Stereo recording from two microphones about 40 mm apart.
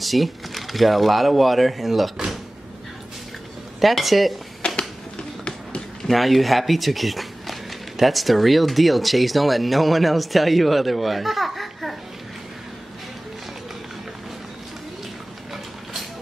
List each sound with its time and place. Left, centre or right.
0.0 s speech: centre
3.8 s speech: centre
4.6 s a sound: left
6.0 s speech: centre
15.5 s vehicle: centre